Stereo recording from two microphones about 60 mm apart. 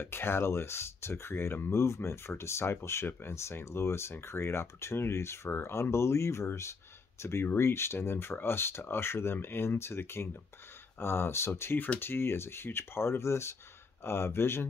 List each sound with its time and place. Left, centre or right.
0.0 s speech: left